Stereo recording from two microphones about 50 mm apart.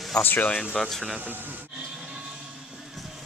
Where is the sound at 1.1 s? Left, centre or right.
Right.